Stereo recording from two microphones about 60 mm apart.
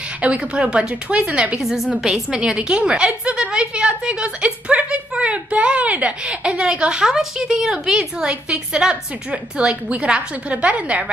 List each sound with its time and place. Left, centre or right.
0.2 s speech: centre
1.6 s a woman's voice: centre; by 11.1 s right